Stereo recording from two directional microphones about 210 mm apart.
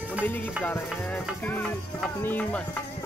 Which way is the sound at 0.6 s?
5° left (ahead or behind).